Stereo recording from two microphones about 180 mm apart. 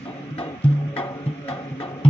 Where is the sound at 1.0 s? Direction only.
30° left (ahead or behind).